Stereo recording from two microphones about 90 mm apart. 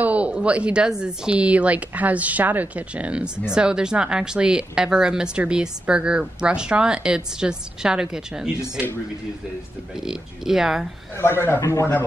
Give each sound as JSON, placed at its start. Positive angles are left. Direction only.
{"t": 0.0, "sound": "a woman's voice", "side_deg": -15}
{"t": 9.9, "sound": "speech", "side_deg": -5}
{"t": 11.1, "sound": "a man's voice", "side_deg": 25}